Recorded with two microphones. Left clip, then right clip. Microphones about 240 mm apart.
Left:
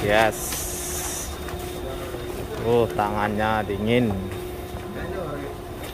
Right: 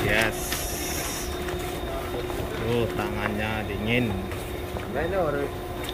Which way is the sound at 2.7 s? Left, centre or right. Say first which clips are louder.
Left 8 dB; centre.